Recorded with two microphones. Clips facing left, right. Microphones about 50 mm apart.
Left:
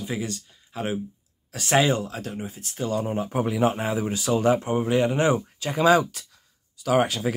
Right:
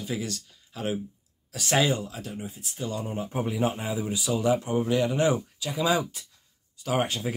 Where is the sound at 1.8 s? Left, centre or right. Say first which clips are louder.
Left 4 dB; left.